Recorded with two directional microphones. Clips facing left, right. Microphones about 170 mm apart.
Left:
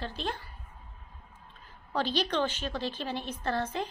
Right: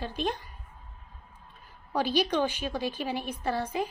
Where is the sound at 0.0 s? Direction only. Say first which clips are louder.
Right 4 dB; 15° right (ahead or behind).